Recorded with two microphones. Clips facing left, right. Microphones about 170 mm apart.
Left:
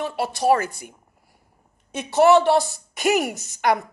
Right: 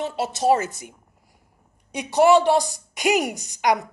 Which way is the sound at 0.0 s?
25° right (ahead or behind).